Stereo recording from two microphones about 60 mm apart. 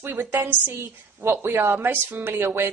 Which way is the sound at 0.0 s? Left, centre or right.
Right.